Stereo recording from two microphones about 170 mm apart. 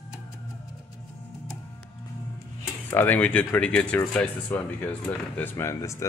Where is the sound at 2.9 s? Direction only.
10° left (ahead or behind).